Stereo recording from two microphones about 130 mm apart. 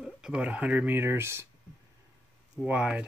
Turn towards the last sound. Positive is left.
turn(degrees=-10)  # may be behind; listen again after turning